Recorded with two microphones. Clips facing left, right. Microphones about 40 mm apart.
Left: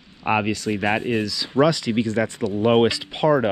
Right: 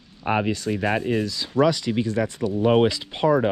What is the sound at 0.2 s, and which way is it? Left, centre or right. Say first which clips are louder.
Speech: left 2 dB; left.